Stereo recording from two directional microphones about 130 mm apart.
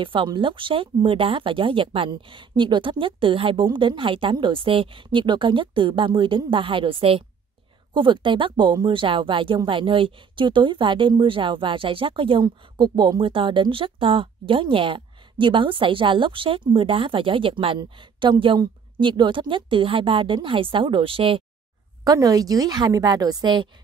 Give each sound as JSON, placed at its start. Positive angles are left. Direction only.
{"t": 0.0, "sound": "speech", "side_deg": -40}
{"t": 22.0, "sound": "a woman's voice", "side_deg": -30}